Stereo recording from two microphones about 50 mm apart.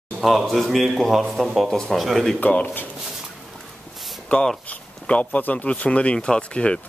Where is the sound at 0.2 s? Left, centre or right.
Centre.